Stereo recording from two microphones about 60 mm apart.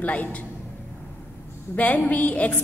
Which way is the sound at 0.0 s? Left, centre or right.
Left.